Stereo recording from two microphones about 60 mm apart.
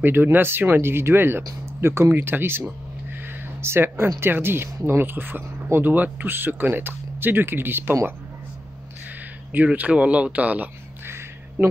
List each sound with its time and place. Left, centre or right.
0.0 s speech: right
3.6 s speech: right
9.5 s speech: right
11.1 s a sound: right